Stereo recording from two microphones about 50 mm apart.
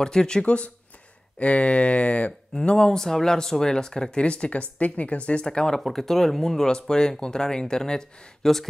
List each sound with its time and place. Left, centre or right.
0.0 s speech: centre
1.4 s speech: left
5.8 s speech: centre